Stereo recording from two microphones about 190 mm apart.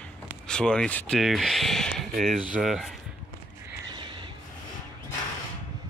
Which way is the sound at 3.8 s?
25° right (ahead or behind).